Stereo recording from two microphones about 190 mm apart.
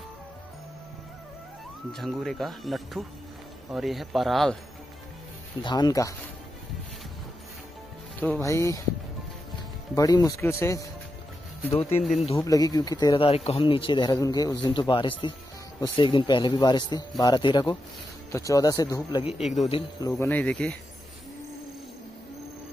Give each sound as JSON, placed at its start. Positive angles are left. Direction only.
{"t": 1.9, "sound": "speech", "side_deg": 0}
{"t": 5.6, "sound": "speech", "side_deg": 20}
{"t": 8.2, "sound": "speech", "side_deg": 10}
{"t": 9.9, "sound": "speech", "side_deg": 20}
{"t": 12.0, "sound": "speech", "side_deg": 0}
{"t": 12.4, "sound": "speech", "side_deg": 20}
{"t": 19.4, "sound": "speech", "side_deg": 0}
{"t": 20.1, "sound": "speech", "side_deg": 10}